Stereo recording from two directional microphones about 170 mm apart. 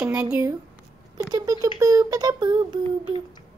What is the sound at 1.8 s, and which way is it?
Speech, 20° right (ahead or behind).